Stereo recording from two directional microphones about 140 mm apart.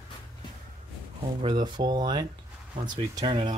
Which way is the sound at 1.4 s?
30° right (ahead or behind).